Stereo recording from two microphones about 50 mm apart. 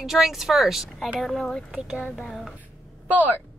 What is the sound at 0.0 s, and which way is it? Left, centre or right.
Speech, centre.